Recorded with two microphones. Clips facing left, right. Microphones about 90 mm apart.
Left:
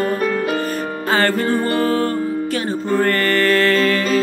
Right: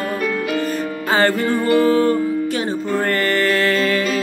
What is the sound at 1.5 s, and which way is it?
Music, 45° left (ahead or behind).